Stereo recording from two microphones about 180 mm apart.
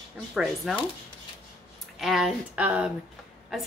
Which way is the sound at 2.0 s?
Centre (ahead or behind).